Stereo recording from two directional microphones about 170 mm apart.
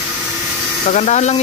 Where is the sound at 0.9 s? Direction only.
45° left (ahead or behind).